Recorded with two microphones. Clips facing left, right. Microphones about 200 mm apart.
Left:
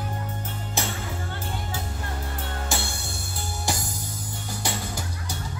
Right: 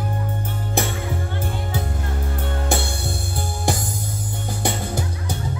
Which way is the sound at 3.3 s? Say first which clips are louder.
Right 5 dB; 55° right (ahead or behind).